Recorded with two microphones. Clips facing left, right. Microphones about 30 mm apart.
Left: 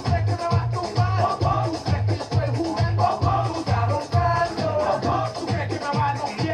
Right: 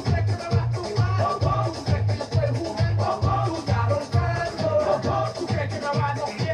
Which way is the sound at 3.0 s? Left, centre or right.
Centre.